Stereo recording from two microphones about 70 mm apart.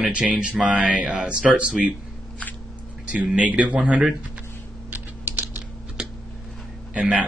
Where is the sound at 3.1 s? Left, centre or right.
Centre.